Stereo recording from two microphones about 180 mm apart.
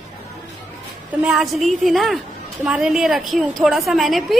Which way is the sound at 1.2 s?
Centre (ahead or behind).